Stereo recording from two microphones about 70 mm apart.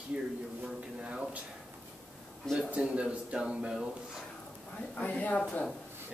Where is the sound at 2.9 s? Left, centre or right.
Centre.